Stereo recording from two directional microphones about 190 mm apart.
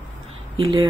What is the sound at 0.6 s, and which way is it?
Speech, 25° right (ahead or behind).